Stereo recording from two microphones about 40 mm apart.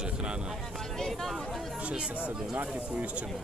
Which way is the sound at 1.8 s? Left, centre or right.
Right.